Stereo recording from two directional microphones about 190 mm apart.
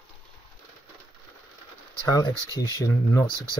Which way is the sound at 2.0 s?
20° left (ahead or behind).